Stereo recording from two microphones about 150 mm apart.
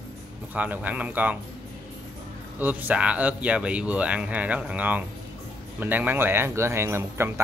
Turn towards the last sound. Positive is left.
turn(degrees=-15)  # may be behind; listen again after turning